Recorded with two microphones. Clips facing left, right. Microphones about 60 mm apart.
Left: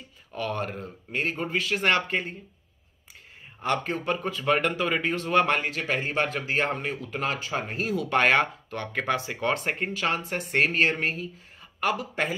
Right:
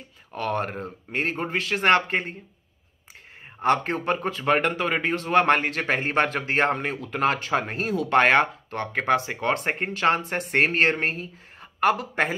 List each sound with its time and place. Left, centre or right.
0.3 s speech: right
3.6 s a man's voice: right
7.7 s speech: right
8.2 s speech: right